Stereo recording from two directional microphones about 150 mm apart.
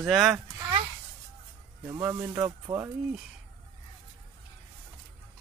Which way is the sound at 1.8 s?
15° right (ahead or behind).